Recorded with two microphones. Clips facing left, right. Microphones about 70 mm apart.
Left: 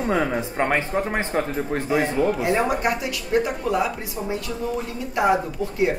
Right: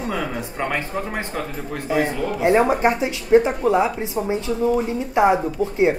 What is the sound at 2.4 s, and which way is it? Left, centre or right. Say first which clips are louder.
Speech: right 5 dB; right.